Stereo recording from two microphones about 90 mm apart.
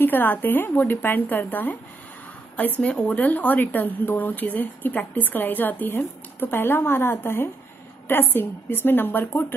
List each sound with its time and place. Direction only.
0.0 s a woman's voice: 20° left (ahead or behind)